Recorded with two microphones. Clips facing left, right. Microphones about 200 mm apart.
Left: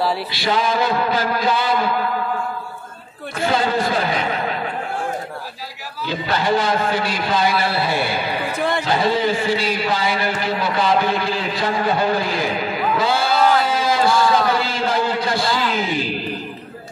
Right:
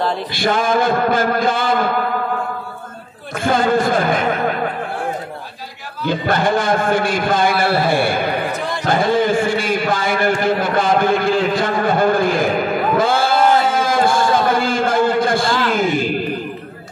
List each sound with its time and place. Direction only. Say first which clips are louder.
0.3 s speech: right 3 dB; 50° right (ahead or behind)
3.3 s speech: right 4 dB; 50° right (ahead or behind)
6.0 s speech: right 3 dB; 50° right (ahead or behind)
13.7 s a sound: right 2 dB; 50° right (ahead or behind)
15.7 s speech: right 5 dB; 50° right (ahead or behind)